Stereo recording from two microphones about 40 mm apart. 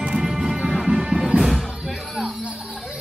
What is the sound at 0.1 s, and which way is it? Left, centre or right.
Music, centre.